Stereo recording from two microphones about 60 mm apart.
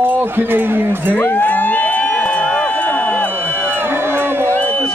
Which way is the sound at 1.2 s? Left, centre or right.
Left.